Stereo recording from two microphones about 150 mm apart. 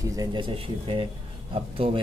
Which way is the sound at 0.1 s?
25° right (ahead or behind).